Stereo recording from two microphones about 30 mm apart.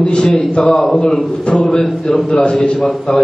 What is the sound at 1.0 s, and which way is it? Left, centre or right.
Speech, left.